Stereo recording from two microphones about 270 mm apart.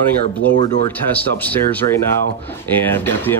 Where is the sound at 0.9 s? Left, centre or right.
Centre.